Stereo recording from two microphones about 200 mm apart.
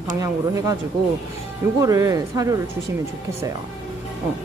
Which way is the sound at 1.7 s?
15° right (ahead or behind).